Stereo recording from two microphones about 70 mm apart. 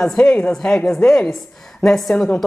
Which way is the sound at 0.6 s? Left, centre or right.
Centre.